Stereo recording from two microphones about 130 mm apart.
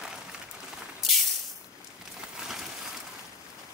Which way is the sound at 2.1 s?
5° right (ahead or behind).